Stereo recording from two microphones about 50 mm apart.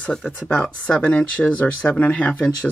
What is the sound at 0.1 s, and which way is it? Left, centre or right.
Speech, centre.